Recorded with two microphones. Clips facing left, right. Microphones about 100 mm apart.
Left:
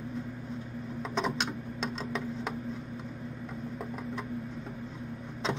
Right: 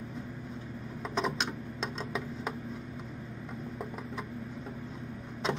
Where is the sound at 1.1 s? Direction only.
Centre (ahead or behind).